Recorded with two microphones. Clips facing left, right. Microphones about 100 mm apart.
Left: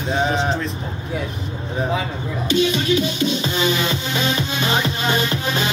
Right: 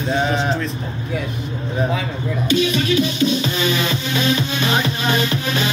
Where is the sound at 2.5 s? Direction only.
30° left (ahead or behind).